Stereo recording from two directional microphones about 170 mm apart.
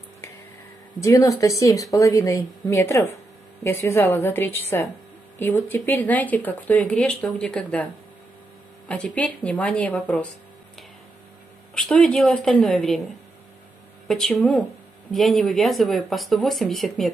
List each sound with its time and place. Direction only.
1.0 s speech: 20° left (ahead or behind)
11.7 s speech: 5° left (ahead or behind)
14.0 s speech: centre (ahead or behind)